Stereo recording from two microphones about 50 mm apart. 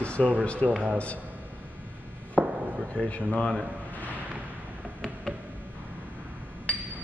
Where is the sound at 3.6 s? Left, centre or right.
Right.